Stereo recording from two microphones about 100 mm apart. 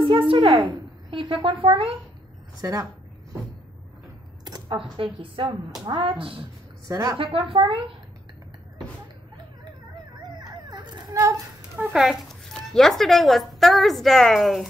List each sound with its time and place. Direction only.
0.0 s a woman's voice: 60° right (ahead or behind)
2.6 s speech: 30° right (ahead or behind)
4.6 s a woman's voice: 60° right (ahead or behind)
6.9 s speech: 35° right (ahead or behind)
7.2 s a woman's voice: 60° right (ahead or behind)
10.2 s a sound: 45° right (ahead or behind)
11.9 s speech: 5° right (ahead or behind)